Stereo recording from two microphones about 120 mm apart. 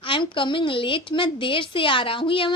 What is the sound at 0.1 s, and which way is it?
A woman's voice, 45° left (ahead or behind).